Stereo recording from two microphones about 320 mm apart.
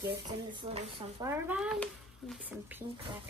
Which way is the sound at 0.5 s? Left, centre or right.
Centre.